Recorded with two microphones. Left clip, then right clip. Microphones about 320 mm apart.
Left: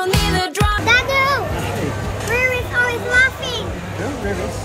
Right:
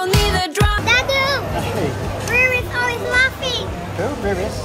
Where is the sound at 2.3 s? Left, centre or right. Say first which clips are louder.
Right 2 dB; centre.